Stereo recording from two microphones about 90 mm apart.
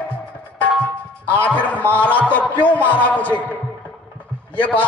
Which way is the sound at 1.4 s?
15° left (ahead or behind).